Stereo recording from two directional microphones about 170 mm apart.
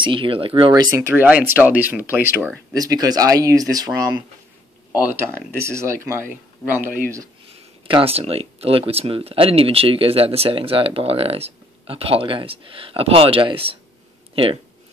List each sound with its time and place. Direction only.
0.0 s speech: 30° right (ahead or behind); by 6.9 s 10° right (ahead or behind)
7.8 s speech: 35° right (ahead or behind)